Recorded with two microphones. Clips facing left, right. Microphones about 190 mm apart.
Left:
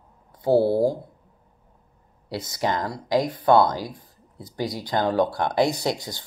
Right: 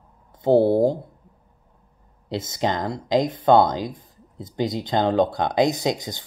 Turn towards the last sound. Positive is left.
turn(degrees=-20)  # may be behind; listen again after turning